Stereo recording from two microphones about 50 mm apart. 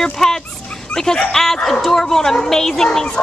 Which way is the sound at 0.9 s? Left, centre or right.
Centre.